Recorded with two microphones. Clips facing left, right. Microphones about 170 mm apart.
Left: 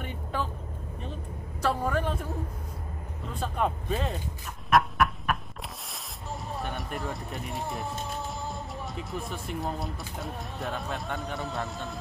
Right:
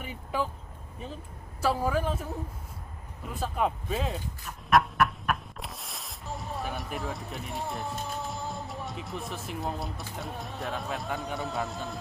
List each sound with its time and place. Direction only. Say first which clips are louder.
0.0 s vehicle: right 1 dB; 10° right (ahead or behind)
1.6 s a woman's voice: right 1 dB; 5° right (ahead or behind)
3.3 s speech: even; 5° right (ahead or behind)